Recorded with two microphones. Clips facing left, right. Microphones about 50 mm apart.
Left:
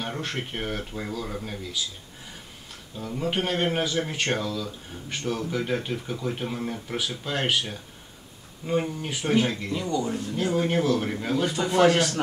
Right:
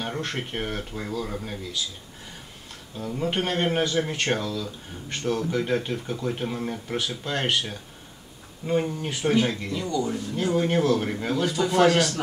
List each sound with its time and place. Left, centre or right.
0.0 s a man's voice: centre
3.0 s a man's voice: centre
11.4 s speech: centre
11.7 s a man's voice: centre